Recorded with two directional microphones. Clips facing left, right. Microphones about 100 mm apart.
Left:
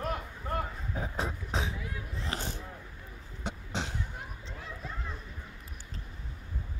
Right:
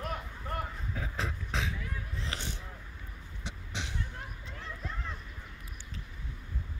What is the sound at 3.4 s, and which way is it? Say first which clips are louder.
Cough: left 5 dB; 40° left (ahead or behind).